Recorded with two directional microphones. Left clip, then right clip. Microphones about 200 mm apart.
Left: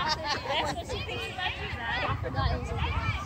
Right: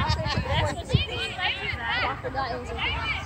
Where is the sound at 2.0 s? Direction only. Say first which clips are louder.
Right 4 dB; 55° left (ahead or behind).